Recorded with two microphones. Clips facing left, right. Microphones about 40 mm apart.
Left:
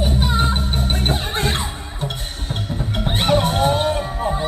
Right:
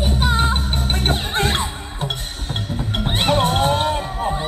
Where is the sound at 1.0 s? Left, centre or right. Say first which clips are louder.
Right 3 dB; right.